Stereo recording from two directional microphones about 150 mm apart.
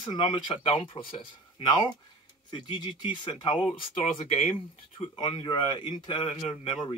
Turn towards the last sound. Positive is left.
turn(degrees=35)  # may be behind; listen again after turning